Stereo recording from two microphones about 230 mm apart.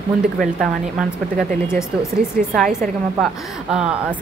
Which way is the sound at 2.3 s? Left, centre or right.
Centre.